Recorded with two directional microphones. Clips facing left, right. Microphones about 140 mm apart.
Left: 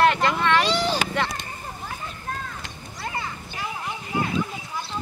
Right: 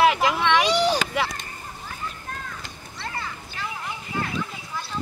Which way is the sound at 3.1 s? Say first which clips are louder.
Left 2 dB; 15° left (ahead or behind).